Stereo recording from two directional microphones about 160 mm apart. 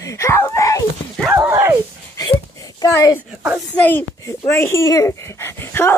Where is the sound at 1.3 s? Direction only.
15° right (ahead or behind).